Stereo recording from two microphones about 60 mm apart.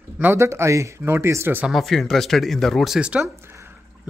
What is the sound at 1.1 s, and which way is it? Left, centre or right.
Speech, right.